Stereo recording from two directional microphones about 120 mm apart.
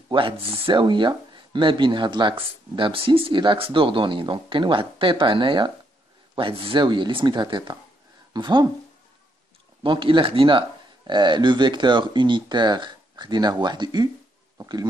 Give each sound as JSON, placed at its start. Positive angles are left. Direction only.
{"t": 0.1, "sound": "a woman's voice", "side_deg": -50}
{"t": 9.8, "sound": "speech", "side_deg": -45}